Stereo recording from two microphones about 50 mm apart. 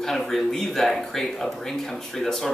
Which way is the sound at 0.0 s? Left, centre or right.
Centre.